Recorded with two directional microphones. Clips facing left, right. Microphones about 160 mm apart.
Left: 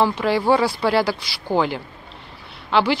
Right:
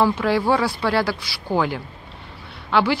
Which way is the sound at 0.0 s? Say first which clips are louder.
Even; centre (ahead or behind).